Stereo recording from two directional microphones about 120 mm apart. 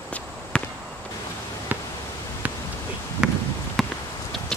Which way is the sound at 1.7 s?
15° right (ahead or behind).